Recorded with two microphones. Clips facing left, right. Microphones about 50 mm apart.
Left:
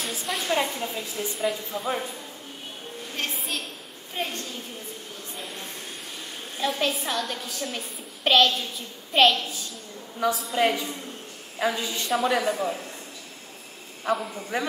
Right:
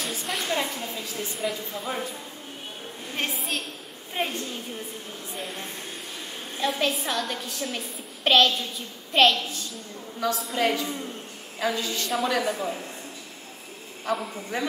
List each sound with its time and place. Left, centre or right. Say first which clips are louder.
0.0 s a woman's voice: even; centre
0.5 s a woman's voice: left 5 dB; centre
1.1 s a woman's voice: left 2 dB; centre
3.3 s a woman's voice: right 1 dB; centre
4.2 s a woman's voice: right 2 dB; centre
5.3 s a sound: right 3 dB; centre
6.6 s a woman's voice: even; centre
14.0 s a woman's voice: left 2 dB; centre